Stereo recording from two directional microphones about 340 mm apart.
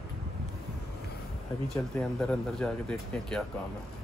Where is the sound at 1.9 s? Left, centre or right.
Centre.